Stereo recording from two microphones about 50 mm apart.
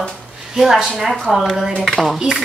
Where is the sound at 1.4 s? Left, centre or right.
Centre.